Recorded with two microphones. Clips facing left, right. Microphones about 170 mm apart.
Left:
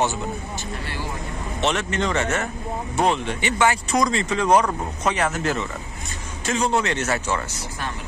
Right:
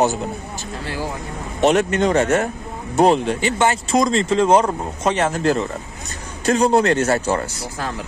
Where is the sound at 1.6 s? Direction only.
45° right (ahead or behind).